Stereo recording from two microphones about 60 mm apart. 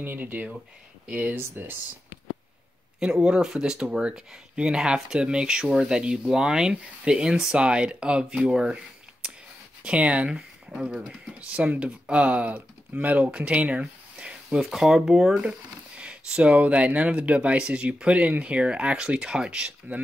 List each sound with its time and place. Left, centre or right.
0.0 s speech: right
1.0 s speech: centre
1.3 s speech: right
3.0 s speech: centre
16.0 s speech: centre